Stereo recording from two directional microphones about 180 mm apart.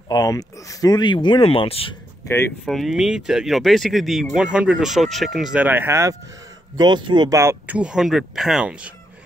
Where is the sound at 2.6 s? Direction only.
Centre (ahead or behind).